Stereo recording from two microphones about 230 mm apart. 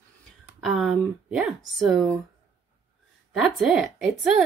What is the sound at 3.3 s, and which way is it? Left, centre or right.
Speech, centre.